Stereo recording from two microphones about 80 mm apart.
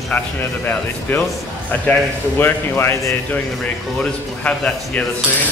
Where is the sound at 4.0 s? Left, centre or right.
Centre.